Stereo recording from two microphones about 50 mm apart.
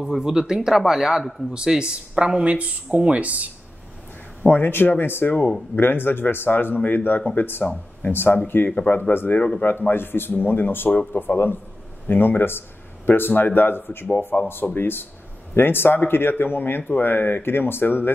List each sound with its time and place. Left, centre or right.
0.0 s speech: centre
1.5 s speech: centre
4.4 s a man's voice: left
7.6 s speech: left
8.1 s speech: left
8.6 s a man's voice: left
9.1 s speech: left
14.3 s speech: left
14.8 s speech: left